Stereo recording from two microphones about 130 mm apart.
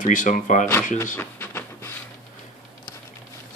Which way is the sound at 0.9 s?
20° left (ahead or behind).